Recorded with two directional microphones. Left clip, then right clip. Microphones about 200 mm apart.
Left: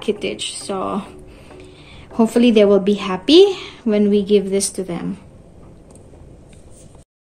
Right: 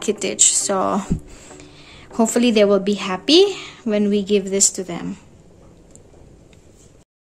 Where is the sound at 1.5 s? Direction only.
15° right (ahead or behind).